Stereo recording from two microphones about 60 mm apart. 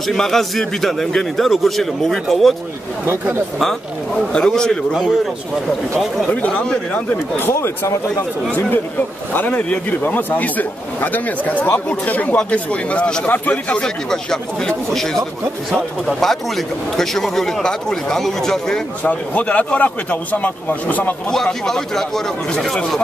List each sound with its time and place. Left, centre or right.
0.0 s a man's voice: centre
4.3 s a man's voice: centre
4.9 s a man's voice: centre
6.3 s a man's voice: centre
7.1 s speech: left
9.3 s a man's voice: left
13.8 s a man's voice: centre
19.0 s a man's voice: left
21.3 s a man's voice: centre